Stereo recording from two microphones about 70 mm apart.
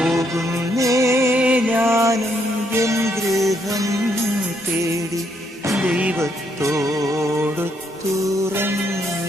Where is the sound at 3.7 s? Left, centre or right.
Right.